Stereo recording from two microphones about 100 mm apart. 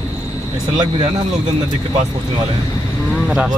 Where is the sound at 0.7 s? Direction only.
45° right (ahead or behind).